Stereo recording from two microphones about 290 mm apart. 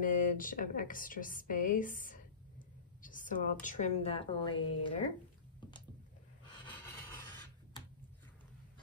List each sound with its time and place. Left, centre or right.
0.0 s a woman's voice: left
3.0 s a sound: left
3.6 s a woman's voice: left